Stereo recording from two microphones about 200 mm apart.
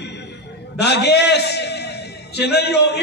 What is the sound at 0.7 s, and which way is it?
A man's voice, 60° left (ahead or behind).